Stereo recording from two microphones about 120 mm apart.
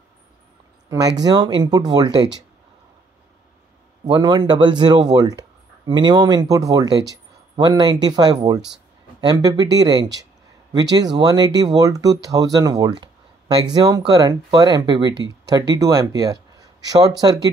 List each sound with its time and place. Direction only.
0.8 s speech: 30° right (ahead or behind)
4.0 s speech: 35° right (ahead or behind)